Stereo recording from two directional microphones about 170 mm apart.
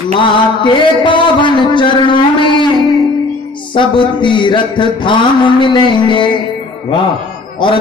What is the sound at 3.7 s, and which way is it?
Mantra, 30° left (ahead or behind).